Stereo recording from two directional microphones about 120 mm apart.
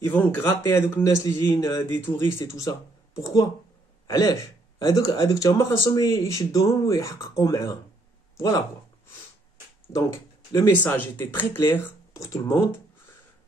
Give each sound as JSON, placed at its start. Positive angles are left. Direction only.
{"t": 0.0, "sound": "speech", "side_deg": 20}
{"t": 9.9, "sound": "speech", "side_deg": 25}